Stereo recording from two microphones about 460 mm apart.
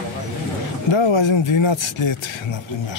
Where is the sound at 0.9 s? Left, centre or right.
Left.